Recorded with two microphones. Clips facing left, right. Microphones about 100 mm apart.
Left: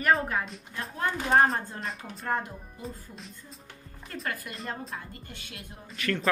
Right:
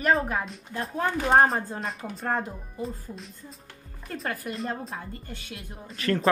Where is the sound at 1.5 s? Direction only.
Centre (ahead or behind).